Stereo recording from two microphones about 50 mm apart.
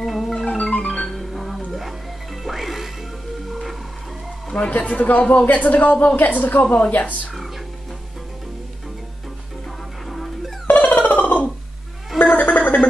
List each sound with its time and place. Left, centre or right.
0.0 s music: centre
0.7 s music: centre
1.1 s music: centre
4.6 s a woman's voice: left
10.0 s music: centre
10.7 s music: left
12.2 s gargling: left